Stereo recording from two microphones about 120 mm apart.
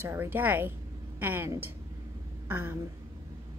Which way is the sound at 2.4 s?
15° right (ahead or behind).